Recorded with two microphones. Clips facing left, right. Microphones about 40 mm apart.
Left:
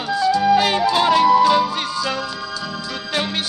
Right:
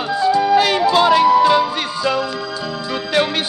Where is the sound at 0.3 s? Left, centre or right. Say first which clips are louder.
Right 2 dB; right.